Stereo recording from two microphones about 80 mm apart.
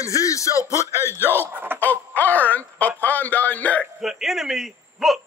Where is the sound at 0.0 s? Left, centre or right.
Left.